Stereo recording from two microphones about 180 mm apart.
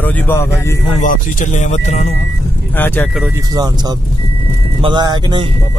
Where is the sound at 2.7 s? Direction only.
10° left (ahead or behind).